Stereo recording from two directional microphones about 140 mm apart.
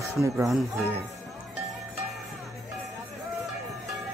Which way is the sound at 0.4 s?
Centre (ahead or behind).